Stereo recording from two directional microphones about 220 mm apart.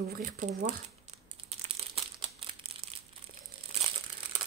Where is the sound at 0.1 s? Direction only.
40° right (ahead or behind).